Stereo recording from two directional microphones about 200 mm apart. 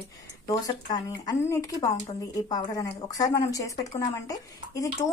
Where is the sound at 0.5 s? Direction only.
20° left (ahead or behind).